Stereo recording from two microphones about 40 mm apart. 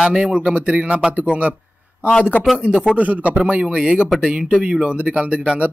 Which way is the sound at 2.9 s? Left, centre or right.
Right.